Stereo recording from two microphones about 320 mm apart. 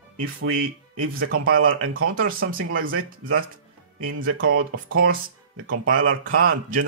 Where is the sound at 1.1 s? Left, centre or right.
Right.